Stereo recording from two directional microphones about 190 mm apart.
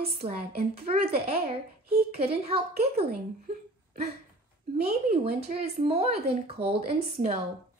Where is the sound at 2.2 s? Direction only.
30° right (ahead or behind).